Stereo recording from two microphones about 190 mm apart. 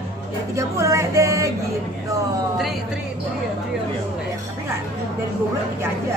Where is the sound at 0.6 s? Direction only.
15° right (ahead or behind).